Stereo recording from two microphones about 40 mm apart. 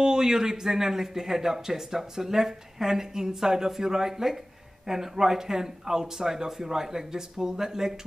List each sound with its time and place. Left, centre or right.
0.0 s a man's voice: centre